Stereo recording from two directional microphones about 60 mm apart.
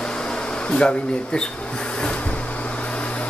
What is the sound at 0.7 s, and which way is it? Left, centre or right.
Speech, centre.